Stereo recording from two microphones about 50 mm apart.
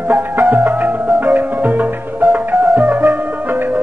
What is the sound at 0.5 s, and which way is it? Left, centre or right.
Music, right.